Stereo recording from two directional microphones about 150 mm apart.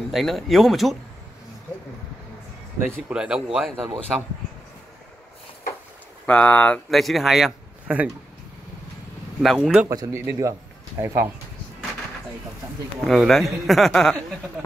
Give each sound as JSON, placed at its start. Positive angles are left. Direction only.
{"t": 0.1, "sound": "a man's voice", "side_deg": 0}
{"t": 3.1, "sound": "a man's voice", "side_deg": -5}
{"t": 6.2, "sound": "a man's voice", "side_deg": 10}
{"t": 9.4, "sound": "a man's voice", "side_deg": 0}
{"t": 9.8, "sound": "speech", "side_deg": -20}
{"t": 13.0, "sound": "a man's voice", "side_deg": 0}